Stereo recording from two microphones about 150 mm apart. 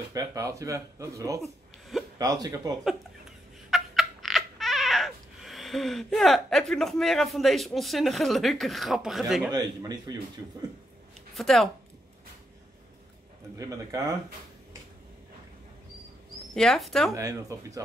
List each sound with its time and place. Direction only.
0.1 s speech: 25° right (ahead or behind)
1.4 s a sound: centre (ahead or behind)
2.4 s speech: 25° right (ahead or behind)
2.8 s a sound: 5° right (ahead or behind)
9.5 s speech: 25° right (ahead or behind)
11.3 s speech: centre (ahead or behind)
13.6 s speech: 25° right (ahead or behind)
16.5 s speech: 5° left (ahead or behind)
17.1 s speech: 20° right (ahead or behind)